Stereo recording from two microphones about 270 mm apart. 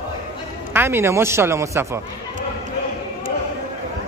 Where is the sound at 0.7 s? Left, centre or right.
Centre.